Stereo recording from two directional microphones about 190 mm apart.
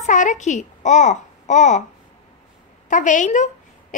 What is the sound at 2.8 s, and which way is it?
A woman's voice, 40° left (ahead or behind).